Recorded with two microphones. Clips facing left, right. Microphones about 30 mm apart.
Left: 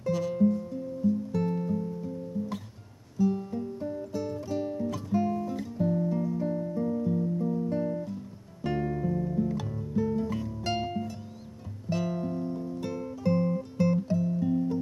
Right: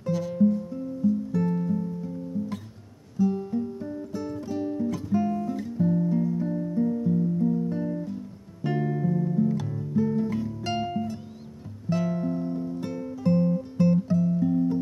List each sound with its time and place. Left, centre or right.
0.0 s music: centre
3.2 s music: centre
8.6 s guitar: centre
9.6 s music: centre
12.4 s music: centre
12.8 s music: centre